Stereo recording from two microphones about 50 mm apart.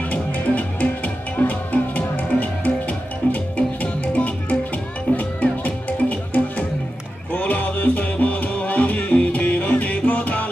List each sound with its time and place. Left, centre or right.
0.1 s music: left